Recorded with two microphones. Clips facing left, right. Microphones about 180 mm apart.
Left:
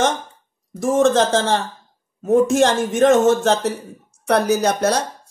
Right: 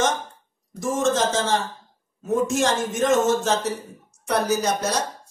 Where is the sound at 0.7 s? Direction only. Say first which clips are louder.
Left 6 dB; 65° left (ahead or behind).